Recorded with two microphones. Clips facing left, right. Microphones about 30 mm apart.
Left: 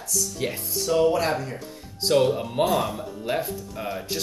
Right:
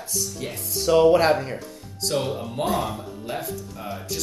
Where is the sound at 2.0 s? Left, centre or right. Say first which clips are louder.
Left 5 dB; left.